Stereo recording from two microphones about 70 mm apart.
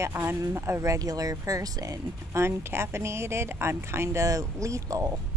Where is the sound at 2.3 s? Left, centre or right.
Right.